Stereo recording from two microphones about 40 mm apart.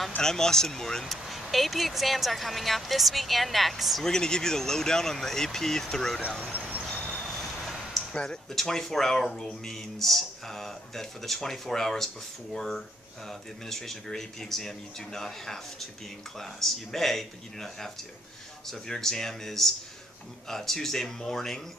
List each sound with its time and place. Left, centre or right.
0.2 s speech: centre
1.0 s speech: centre
4.0 s speech: centre
8.1 s speech: left
8.5 s speech: centre